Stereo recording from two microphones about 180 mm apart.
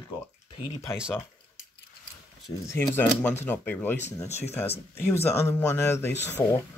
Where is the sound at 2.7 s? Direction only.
10° left (ahead or behind).